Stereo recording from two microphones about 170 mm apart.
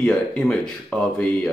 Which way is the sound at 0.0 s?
5° left (ahead or behind).